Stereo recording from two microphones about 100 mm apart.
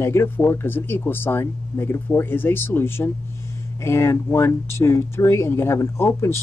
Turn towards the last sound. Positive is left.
turn(degrees=25)  # may be behind; listen again after turning